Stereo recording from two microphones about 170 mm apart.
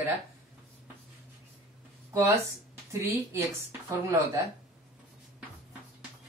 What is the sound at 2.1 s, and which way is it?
Speech, 15° right (ahead or behind).